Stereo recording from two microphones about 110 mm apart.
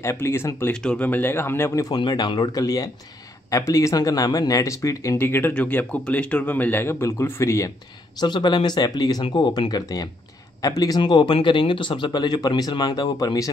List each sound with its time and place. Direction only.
0.0 s speech: 25° left (ahead or behind)
0.7 s speech: 10° left (ahead or behind); by 2.0 s 25° left (ahead or behind)
2.0 s speech: 40° left (ahead or behind); by 7.7 s 25° left (ahead or behind)
8.2 s speech: 40° left (ahead or behind)
11.0 s speech: 45° left (ahead or behind)